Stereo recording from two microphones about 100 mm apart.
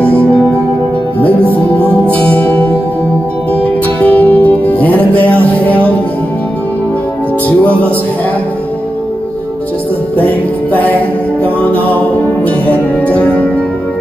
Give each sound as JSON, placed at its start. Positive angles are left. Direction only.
{"t": 0.0, "sound": "music", "side_deg": 15}
{"t": 1.8, "sound": "music", "side_deg": 15}
{"t": 4.0, "sound": "music", "side_deg": 15}
{"t": 7.4, "sound": "music", "side_deg": 15}
{"t": 10.1, "sound": "music", "side_deg": 15}
{"t": 13.0, "sound": "music", "side_deg": 15}